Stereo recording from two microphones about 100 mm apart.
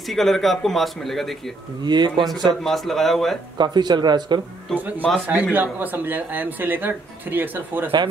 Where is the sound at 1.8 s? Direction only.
45° right (ahead or behind).